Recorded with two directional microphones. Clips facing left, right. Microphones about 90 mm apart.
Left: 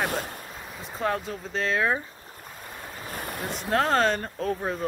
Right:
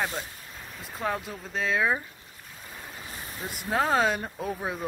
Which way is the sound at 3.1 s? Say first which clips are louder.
Left 7 dB; 55° left (ahead or behind).